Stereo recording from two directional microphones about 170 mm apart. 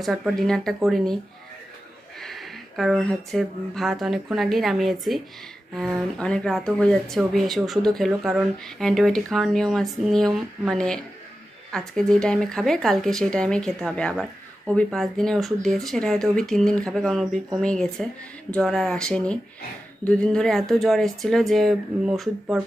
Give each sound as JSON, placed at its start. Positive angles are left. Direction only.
{"t": 0.0, "sound": "speech", "side_deg": 0}
{"t": 2.1, "sound": "speech", "side_deg": 0}